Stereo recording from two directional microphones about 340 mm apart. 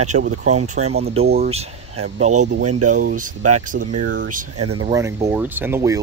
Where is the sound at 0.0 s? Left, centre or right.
Right.